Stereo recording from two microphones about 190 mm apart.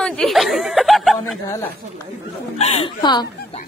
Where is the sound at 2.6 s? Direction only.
30° left (ahead or behind).